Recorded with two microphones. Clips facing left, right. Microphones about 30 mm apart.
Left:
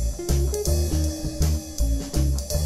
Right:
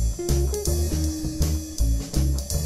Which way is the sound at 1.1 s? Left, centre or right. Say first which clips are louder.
Right 1 dB; centre.